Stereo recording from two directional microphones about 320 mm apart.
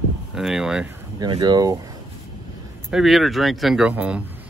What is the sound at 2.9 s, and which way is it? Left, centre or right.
Speech, centre.